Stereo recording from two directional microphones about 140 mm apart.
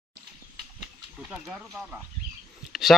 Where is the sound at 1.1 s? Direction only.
5° right (ahead or behind).